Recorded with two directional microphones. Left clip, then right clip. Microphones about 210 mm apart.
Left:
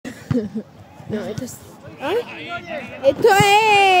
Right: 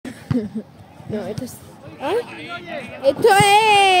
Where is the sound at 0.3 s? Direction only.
5° right (ahead or behind).